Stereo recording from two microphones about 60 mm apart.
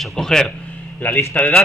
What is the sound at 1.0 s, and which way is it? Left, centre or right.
Speech, left.